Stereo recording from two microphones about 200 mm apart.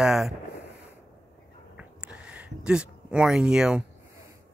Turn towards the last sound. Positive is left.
turn(degrees=-5)  # may be behind; listen again after turning